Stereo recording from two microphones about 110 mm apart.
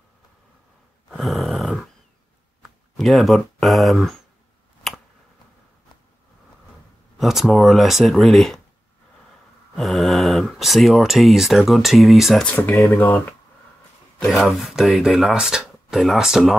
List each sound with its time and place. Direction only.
1.1 s a sound: centre (ahead or behind)
3.0 s speech: centre (ahead or behind)
4.8 s finger snapping: centre (ahead or behind)
7.2 s speech: centre (ahead or behind)
9.8 s speech: centre (ahead or behind)
12.4 s speech: 15° left (ahead or behind)
14.2 s speech: centre (ahead or behind)